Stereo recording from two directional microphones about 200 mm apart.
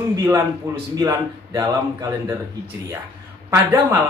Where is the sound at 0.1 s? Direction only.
10° right (ahead or behind).